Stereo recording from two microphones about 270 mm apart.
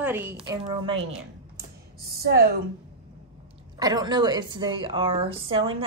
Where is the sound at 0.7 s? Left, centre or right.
Right.